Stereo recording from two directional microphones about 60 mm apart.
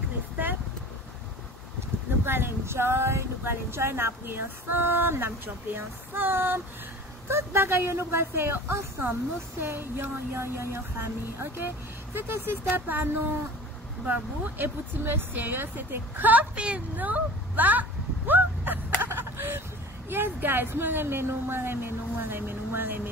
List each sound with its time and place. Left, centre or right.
2.2 s speech: right
15.3 s a sound: right
20.1 s speech: right